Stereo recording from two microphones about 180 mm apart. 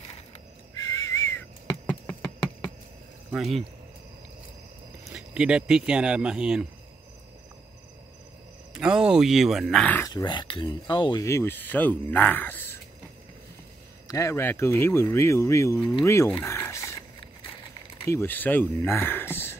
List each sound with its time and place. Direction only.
0.7 s whistling: 15° left (ahead or behind)
3.3 s speech: centre (ahead or behind)
5.1 s speech: 5° right (ahead or behind)
8.7 s speech: 5° right (ahead or behind)
9.9 s speech: 20° left (ahead or behind)
14.0 s speech: 15° left (ahead or behind)
16.3 s a sound: 15° left (ahead or behind)
18.0 s speech: 15° left (ahead or behind)